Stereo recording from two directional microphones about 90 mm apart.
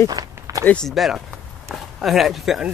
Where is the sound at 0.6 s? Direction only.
10° left (ahead or behind).